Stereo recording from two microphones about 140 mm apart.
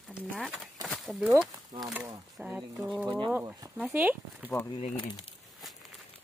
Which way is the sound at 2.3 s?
10° right (ahead or behind).